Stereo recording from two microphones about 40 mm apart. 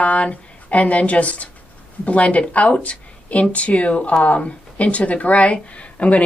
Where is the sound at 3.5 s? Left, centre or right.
Left.